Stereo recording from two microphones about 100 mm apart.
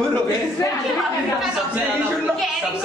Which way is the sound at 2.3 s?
Centre (ahead or behind).